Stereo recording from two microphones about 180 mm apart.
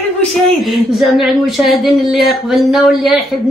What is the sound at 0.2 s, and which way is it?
Speech, centre (ahead or behind).